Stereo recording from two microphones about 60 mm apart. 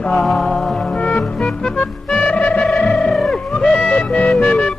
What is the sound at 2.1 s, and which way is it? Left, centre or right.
Music, centre.